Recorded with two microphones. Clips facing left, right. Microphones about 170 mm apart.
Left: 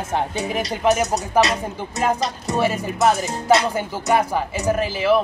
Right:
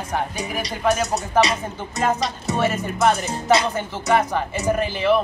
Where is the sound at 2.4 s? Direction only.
10° left (ahead or behind).